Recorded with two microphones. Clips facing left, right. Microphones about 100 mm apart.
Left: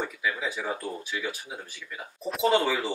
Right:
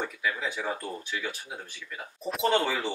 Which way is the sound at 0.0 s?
5° left (ahead or behind).